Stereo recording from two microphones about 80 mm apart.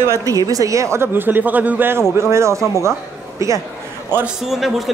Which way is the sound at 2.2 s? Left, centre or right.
Right.